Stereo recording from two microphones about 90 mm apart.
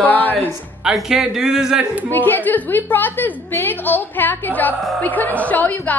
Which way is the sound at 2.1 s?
20° left (ahead or behind).